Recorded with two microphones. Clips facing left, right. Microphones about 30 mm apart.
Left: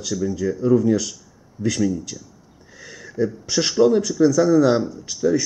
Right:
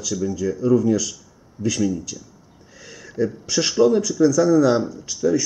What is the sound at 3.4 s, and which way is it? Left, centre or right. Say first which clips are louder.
Speech: even; centre.